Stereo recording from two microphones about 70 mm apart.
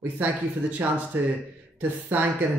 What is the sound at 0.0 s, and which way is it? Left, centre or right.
Speech, right.